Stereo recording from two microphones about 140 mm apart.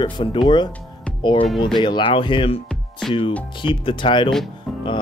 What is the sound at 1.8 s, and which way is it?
Speech, 35° left (ahead or behind).